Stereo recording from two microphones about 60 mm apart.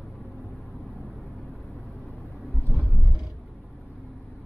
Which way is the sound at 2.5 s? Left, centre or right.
Left.